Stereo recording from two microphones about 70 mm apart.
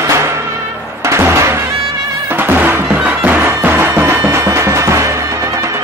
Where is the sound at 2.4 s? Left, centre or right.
Right.